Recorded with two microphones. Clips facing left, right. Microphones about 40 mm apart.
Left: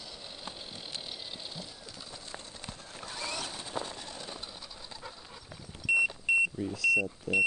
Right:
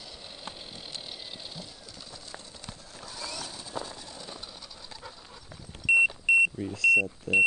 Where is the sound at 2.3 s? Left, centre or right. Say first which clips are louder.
Left 1 dB; left.